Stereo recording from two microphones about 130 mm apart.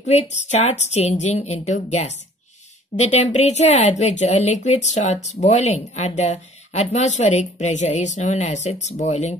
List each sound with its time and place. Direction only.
0.0 s speech: 55° left (ahead or behind)